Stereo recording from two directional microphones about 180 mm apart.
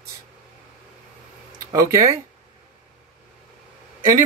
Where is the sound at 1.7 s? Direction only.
15° right (ahead or behind).